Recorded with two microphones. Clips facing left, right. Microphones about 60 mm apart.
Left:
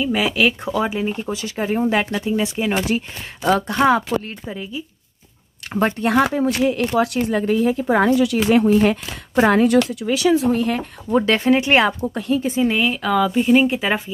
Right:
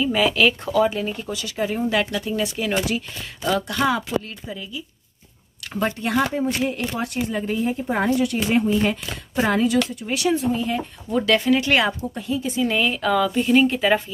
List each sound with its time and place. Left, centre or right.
0.0 s speech: centre
1.2 s speech: left
3.4 s speech: left
5.9 s a woman's voice: left
6.3 s speech: left
7.0 s speech: left
9.4 s a woman's voice: left
10.3 s speech: left
11.1 s speech: left
12.1 s speech: left
12.4 s speech: left
12.7 s speech: centre